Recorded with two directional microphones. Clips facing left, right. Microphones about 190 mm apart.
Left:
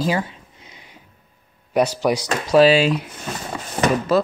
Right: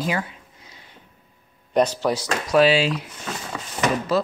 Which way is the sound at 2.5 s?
40° left (ahead or behind).